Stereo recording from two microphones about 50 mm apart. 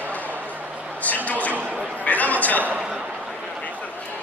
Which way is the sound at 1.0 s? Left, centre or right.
Left.